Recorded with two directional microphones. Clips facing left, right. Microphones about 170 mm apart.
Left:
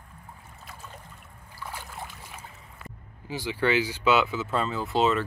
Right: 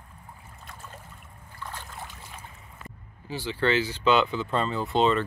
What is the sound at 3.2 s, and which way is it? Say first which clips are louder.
Speech: even; 15° left (ahead or behind).